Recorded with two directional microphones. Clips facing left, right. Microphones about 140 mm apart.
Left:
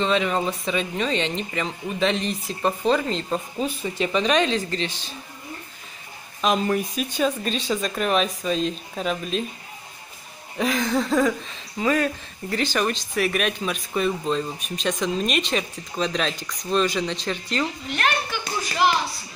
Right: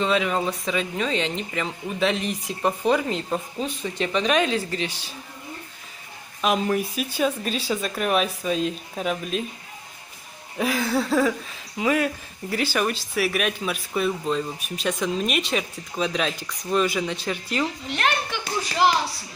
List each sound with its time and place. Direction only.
0.0 s speech: 5° right (ahead or behind)
3.5 s speech: 5° left (ahead or behind); by 5.1 s 10° right (ahead or behind)
6.4 s speech: 5° right (ahead or behind)
10.6 s speech: 5° right (ahead or behind)
17.8 s a woman's voice: 20° right (ahead or behind)